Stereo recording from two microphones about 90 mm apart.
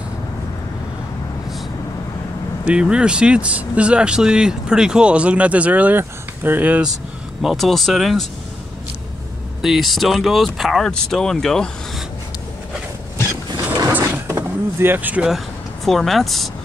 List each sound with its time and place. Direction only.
2.6 s speech: 10° right (ahead or behind)
7.4 s speech: centre (ahead or behind)
9.6 s speech: centre (ahead or behind)
14.2 s a sound: 25° right (ahead or behind)
15.2 s speech: centre (ahead or behind)